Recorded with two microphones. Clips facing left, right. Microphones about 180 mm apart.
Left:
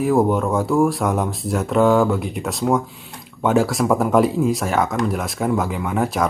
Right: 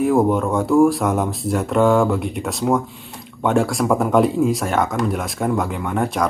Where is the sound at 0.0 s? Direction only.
Centre (ahead or behind).